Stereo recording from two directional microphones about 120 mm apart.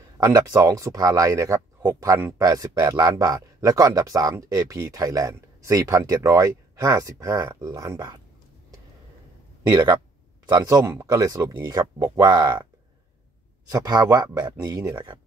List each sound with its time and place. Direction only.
0.2 s speech: 30° right (ahead or behind)
9.6 s speech: 30° right (ahead or behind)
13.7 s speech: 30° right (ahead or behind)